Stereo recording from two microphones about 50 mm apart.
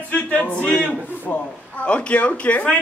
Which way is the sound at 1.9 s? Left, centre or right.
Left.